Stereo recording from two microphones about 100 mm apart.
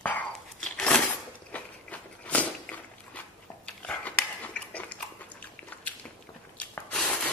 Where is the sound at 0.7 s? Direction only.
10° left (ahead or behind).